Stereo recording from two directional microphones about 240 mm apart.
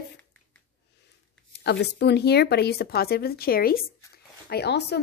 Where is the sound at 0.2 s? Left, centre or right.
Centre.